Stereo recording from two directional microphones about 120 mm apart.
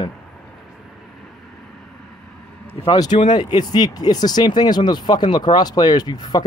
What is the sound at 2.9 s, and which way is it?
Speech, 35° left (ahead or behind).